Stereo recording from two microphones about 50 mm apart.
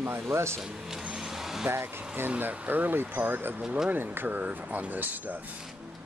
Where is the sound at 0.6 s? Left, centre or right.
Centre.